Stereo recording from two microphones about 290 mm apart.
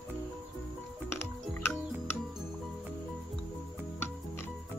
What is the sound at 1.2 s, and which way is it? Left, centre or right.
Music, centre.